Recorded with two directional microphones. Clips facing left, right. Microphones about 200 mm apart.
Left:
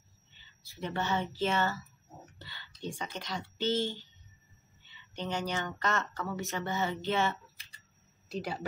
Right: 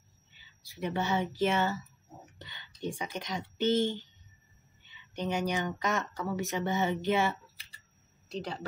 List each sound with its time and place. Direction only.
0.3 s speech: 15° right (ahead or behind)
8.3 s speech: 10° left (ahead or behind)